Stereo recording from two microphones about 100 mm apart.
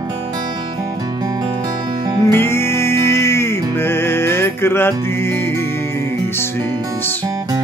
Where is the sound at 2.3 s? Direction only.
25° left (ahead or behind).